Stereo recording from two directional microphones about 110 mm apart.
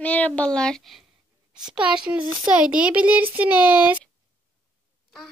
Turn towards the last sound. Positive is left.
turn(degrees=-15)  # may be behind; listen again after turning